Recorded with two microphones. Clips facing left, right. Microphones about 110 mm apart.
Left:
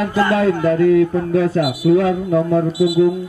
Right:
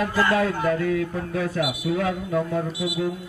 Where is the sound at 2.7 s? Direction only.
Centre (ahead or behind).